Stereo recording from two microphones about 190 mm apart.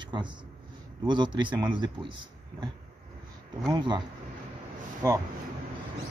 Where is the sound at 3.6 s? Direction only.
20° right (ahead or behind).